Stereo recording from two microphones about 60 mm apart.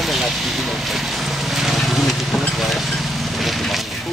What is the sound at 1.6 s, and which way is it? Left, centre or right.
Vehicle, centre.